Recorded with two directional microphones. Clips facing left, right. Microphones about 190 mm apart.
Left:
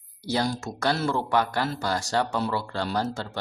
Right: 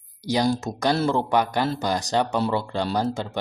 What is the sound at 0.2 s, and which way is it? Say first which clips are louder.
Speech: right 4 dB; 15° right (ahead or behind).